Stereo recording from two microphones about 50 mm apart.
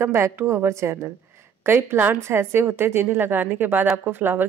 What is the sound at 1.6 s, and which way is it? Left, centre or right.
Speech, right.